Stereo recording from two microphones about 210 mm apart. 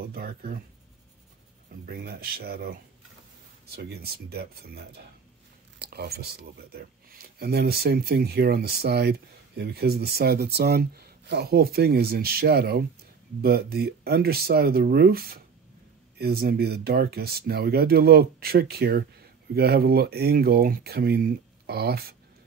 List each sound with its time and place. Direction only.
0.0 s speech: 45° right (ahead or behind)
1.9 s speech: 45° right (ahead or behind)